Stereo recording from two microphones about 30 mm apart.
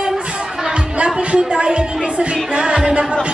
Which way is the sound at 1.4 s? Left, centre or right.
Right.